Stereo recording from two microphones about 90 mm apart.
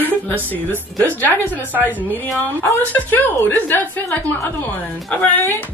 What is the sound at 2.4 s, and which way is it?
A woman's voice, 20° left (ahead or behind).